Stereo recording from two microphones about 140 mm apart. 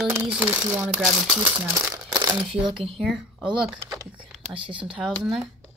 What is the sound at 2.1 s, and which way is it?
Speech, 35° right (ahead or behind).